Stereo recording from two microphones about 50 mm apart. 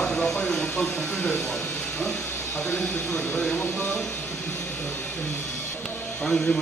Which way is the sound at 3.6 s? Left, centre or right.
Left.